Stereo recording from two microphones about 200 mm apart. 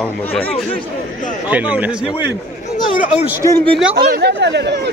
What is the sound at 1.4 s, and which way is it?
Speech, 5° right (ahead or behind).